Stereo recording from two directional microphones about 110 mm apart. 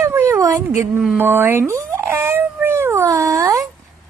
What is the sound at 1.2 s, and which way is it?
Cat, 20° right (ahead or behind).